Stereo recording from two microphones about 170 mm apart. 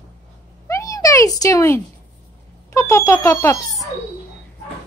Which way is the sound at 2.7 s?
15° left (ahead or behind).